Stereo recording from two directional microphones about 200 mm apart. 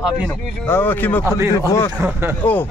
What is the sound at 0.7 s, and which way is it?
Speech, 10° left (ahead or behind).